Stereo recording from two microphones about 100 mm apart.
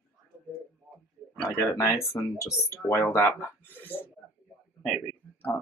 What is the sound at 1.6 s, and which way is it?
Speech, 30° left (ahead or behind).